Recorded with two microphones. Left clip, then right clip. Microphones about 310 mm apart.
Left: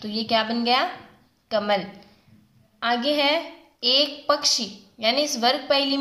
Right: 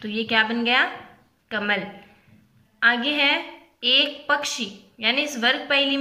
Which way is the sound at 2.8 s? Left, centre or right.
Centre.